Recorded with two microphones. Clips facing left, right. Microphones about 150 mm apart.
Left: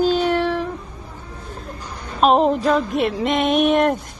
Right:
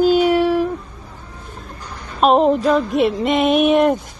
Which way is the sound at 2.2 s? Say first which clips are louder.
Right 2 dB; centre (ahead or behind).